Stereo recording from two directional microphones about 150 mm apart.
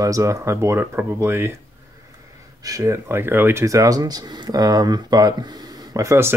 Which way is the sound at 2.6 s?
20° right (ahead or behind).